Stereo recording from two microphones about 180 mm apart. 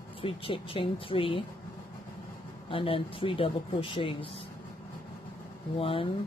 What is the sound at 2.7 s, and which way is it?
Speech, 30° left (ahead or behind).